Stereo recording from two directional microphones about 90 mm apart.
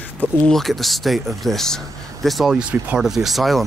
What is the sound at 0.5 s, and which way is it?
Speech, centre (ahead or behind).